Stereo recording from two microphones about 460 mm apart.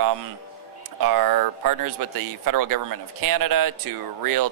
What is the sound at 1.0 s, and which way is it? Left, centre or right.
Speech, right.